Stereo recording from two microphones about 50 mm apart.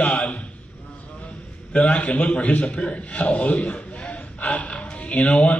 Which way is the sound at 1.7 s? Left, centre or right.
Left.